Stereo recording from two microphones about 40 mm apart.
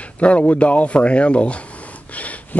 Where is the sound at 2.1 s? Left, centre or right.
Left.